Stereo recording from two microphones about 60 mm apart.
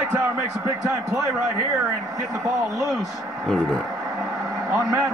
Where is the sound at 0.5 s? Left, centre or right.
Right.